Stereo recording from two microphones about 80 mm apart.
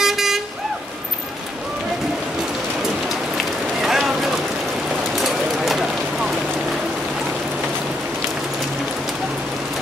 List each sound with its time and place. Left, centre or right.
0.0 s vehicle: centre
3.3 s run: centre
5.1 s a sound: centre